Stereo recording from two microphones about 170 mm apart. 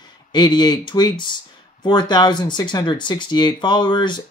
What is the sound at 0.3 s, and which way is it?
Speech, 25° left (ahead or behind).